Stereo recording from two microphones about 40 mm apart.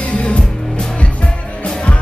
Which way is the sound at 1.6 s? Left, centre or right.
Left.